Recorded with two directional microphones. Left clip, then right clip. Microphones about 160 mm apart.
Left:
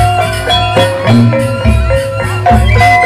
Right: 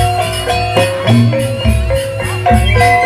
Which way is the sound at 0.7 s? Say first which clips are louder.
Left 3 dB; 30° right (ahead or behind).